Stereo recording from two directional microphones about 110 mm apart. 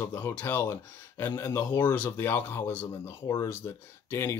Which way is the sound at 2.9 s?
30° left (ahead or behind).